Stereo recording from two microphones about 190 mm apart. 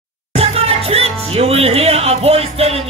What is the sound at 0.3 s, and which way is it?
Music, 30° right (ahead or behind).